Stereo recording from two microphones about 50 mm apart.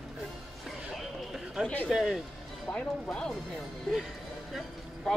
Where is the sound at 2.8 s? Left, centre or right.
Centre.